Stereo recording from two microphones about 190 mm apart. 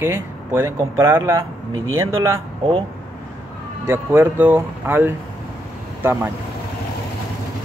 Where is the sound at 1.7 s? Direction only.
90° right.